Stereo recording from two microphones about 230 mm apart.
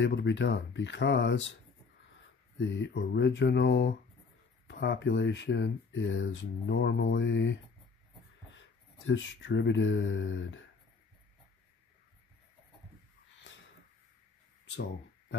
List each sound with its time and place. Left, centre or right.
0.0 s speech: left
2.6 s speech: left
8.5 s speech: left